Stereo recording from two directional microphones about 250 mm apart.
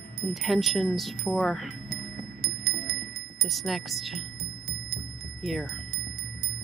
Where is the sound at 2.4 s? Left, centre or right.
Right.